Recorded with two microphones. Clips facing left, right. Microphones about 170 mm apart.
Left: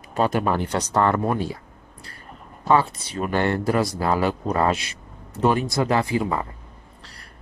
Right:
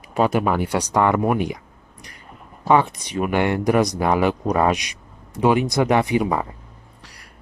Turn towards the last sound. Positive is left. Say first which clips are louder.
# right 3 dB
turn(degrees=-20)  # may be behind; listen again after turning